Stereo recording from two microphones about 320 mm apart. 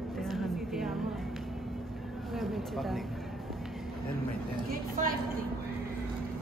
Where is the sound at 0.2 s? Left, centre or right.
Centre.